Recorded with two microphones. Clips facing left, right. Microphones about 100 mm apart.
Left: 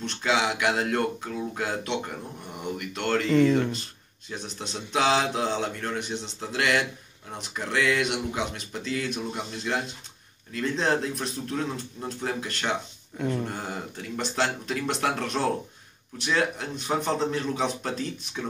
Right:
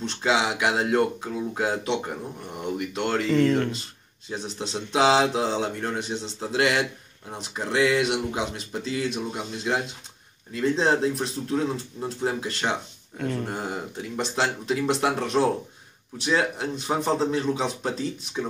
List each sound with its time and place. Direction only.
0.0 s speech: 20° right (ahead or behind)
3.3 s speech: 10° left (ahead or behind)
4.3 s speech: 20° right (ahead or behind)
13.2 s speech: 10° left (ahead or behind)
13.5 s speech: 15° right (ahead or behind)